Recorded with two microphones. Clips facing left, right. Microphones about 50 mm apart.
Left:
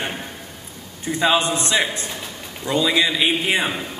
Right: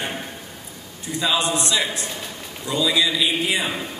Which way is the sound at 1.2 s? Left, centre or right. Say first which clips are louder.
Left 3 dB; left.